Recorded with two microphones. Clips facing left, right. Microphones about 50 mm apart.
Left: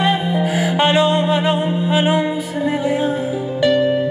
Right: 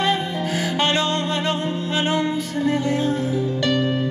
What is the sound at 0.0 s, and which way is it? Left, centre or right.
Music, centre.